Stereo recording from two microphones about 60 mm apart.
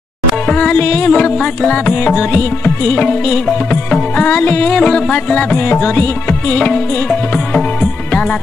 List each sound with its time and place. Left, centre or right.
0.5 s music: centre
3.1 s music: centre
4.4 s music: left
4.7 s music: centre; by 6.3 s left
6.5 s music: centre